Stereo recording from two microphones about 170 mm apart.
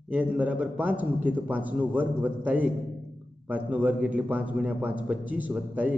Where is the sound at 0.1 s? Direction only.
10° right (ahead or behind).